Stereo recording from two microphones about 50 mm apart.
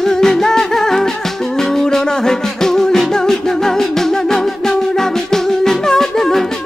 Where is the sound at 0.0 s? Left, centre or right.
Centre.